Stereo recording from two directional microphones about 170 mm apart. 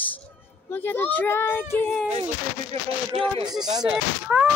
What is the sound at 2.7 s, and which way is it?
Speech, 35° right (ahead or behind).